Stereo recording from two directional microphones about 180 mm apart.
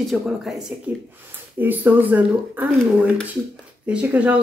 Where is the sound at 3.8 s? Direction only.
5° right (ahead or behind).